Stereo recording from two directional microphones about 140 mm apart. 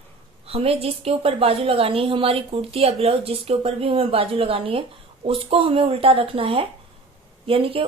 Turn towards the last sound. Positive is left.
turn(degrees=-40)  # may be behind; listen again after turning